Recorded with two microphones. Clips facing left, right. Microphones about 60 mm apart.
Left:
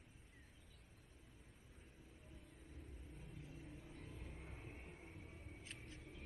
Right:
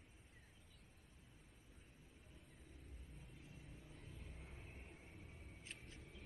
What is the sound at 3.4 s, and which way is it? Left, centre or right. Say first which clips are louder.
Vehicle: left 4 dB; left.